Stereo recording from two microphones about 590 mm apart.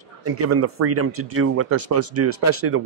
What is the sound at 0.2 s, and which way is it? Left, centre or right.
Speech, right.